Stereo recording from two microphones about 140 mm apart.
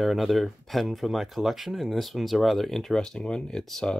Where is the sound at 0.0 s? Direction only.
Centre (ahead or behind).